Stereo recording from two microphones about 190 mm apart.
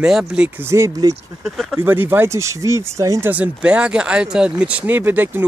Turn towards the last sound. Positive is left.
turn(degrees=-10)  # may be behind; listen again after turning